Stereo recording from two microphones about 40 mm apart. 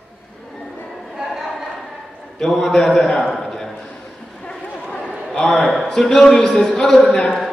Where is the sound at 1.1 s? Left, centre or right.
Centre.